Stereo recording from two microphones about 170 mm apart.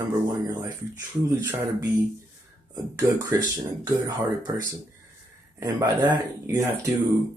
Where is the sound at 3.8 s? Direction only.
25° right (ahead or behind).